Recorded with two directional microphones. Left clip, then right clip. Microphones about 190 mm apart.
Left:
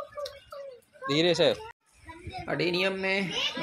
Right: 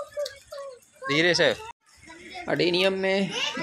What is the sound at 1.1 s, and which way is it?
Speech, 5° left (ahead or behind).